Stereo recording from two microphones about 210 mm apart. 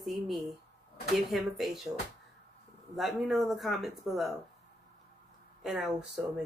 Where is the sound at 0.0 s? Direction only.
Centre (ahead or behind).